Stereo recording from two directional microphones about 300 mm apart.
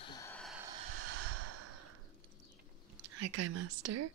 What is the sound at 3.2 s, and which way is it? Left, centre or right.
Whispering, right.